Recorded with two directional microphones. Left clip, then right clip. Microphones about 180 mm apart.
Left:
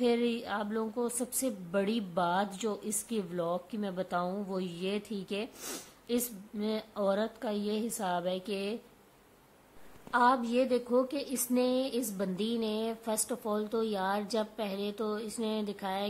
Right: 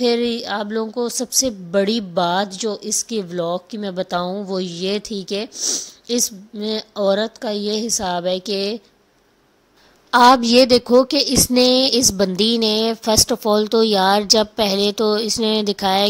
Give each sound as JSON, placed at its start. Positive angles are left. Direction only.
{"t": 0.0, "sound": "a woman's voice", "side_deg": -40}
{"t": 10.1, "sound": "a woman's voice", "side_deg": -55}